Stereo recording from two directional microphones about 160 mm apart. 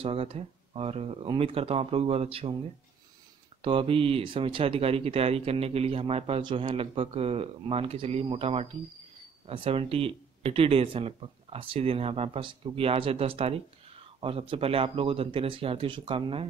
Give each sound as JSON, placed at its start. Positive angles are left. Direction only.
{"t": 0.0, "sound": "speech", "side_deg": -35}
{"t": 3.6, "sound": "speech", "side_deg": -35}